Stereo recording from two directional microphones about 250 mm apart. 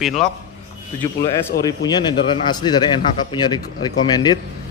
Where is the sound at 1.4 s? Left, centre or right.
Centre.